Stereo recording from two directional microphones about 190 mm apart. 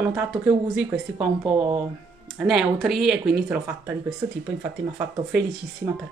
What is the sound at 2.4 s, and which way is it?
Speech, centre (ahead or behind).